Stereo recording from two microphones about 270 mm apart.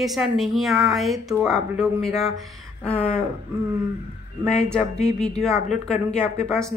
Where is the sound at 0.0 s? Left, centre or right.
Centre.